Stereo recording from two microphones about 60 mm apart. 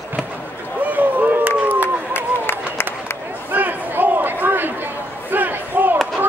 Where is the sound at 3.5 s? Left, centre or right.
Right.